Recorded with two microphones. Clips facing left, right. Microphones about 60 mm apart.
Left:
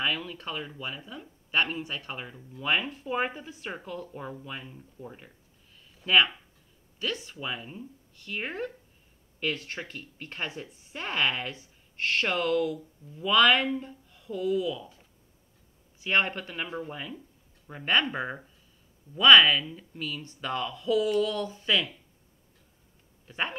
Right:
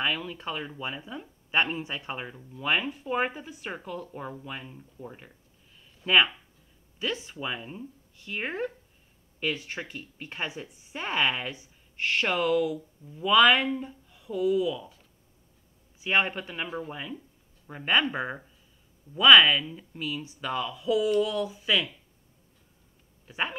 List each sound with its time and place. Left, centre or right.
0.0 s speech: centre
16.0 s speech: centre
23.2 s speech: centre